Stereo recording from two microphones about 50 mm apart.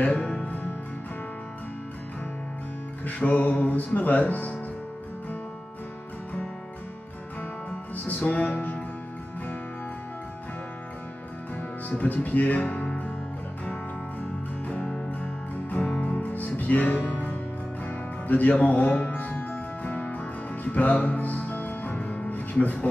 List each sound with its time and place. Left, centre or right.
0.0 s music: left
3.1 s speech: left
7.9 s music: left
11.9 s speech: left
14.7 s music: left